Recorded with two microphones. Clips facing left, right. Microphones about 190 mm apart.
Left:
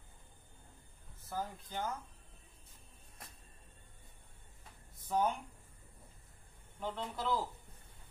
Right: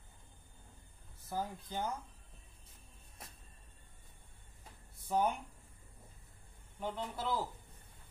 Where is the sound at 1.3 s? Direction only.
15° right (ahead or behind).